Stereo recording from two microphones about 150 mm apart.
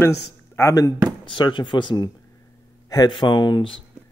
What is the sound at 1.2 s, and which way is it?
Speech, 35° left (ahead or behind).